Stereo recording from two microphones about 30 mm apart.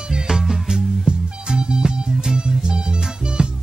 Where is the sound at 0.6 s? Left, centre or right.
Right.